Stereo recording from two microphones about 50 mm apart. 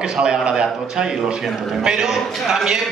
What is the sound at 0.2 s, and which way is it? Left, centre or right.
A man's voice, centre.